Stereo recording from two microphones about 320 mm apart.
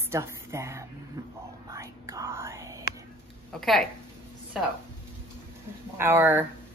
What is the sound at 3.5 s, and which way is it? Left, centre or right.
Speech, centre.